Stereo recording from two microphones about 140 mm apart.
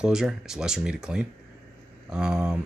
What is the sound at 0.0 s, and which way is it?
Speech, 5° right (ahead or behind).